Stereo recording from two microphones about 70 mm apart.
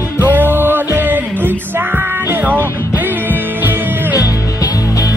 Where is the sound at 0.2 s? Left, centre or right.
Right.